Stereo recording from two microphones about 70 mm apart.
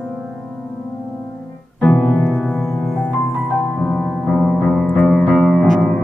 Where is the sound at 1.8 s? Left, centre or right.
Left.